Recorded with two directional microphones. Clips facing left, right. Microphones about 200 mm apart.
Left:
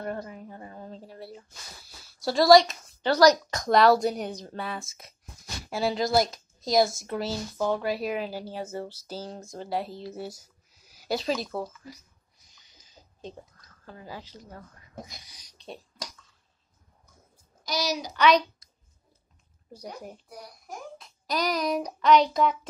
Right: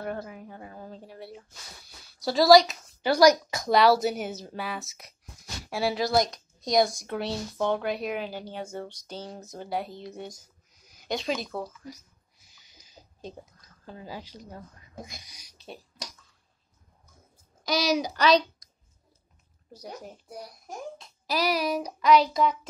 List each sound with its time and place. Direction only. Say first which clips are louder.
0.0 s a sound: even; 5° right (ahead or behind)
2.2 s speech: even; centre (ahead or behind)
12.5 s a sound: right 3 dB; 10° right (ahead or behind)
15.2 s speech: left 2 dB; 10° right (ahead or behind)
17.6 s a woman's voice: right 5 dB; 55° right (ahead or behind)
19.8 s a child's voice: left 1 dB; 10° left (ahead or behind)
21.3 s speech: right 1 dB; 5° right (ahead or behind)